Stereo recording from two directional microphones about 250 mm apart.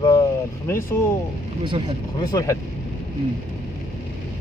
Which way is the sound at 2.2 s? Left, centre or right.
Centre.